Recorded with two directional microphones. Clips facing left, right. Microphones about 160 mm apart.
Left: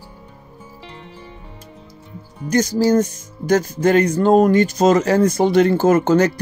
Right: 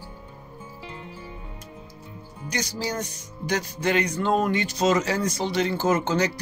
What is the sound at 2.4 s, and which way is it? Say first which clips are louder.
Speech: left 13 dB; 45° left (ahead or behind).